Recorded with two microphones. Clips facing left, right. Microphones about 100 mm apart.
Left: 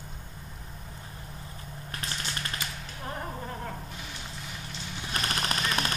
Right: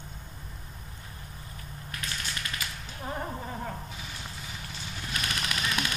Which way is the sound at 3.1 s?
5° right (ahead or behind).